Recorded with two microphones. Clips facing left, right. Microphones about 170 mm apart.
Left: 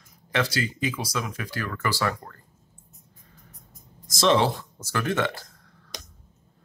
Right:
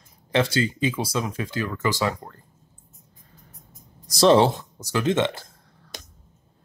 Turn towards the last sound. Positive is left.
turn(degrees=-25)  # may be behind; listen again after turning